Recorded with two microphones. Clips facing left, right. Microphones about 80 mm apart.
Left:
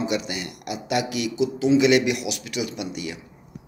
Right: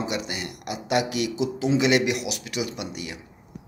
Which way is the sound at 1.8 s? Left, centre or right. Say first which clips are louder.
Left 1 dB; right.